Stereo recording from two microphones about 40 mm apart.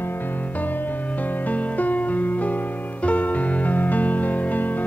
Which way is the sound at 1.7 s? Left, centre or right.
Left.